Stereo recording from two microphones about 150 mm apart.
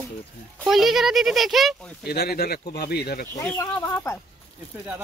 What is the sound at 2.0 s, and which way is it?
Speech, 90° left.